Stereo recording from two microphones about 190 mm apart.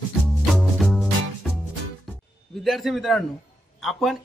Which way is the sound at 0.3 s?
5° left (ahead or behind).